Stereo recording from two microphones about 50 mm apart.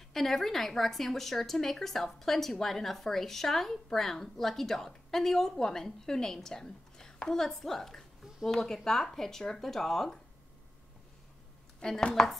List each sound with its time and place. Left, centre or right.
0.1 s speech: centre
12.0 s speech: centre